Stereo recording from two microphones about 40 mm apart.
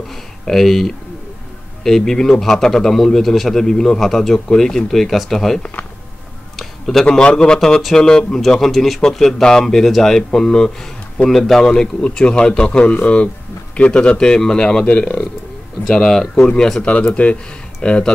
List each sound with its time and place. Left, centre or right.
0.5 s a man's voice: centre
6.5 s a sound: centre
7.1 s a man's voice: left; by 9.0 s centre
9.4 s a man's voice: centre
13.9 s speech: left
15.9 s a man's voice: centre
17.2 s speech: left
17.8 s speech: left